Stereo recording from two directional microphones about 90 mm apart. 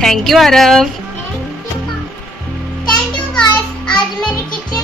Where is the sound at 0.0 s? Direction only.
5° left (ahead or behind).